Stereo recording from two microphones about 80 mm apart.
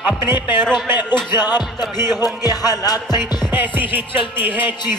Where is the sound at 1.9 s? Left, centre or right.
Right.